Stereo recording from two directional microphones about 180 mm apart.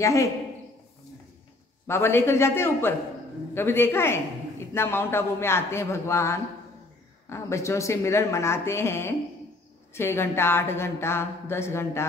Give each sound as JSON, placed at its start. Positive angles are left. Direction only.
{"t": 0.0, "sound": "speech", "side_deg": 15}
{"t": 1.9, "sound": "speech", "side_deg": 15}